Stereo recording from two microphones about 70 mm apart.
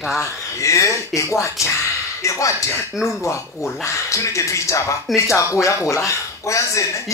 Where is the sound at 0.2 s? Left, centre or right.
Left.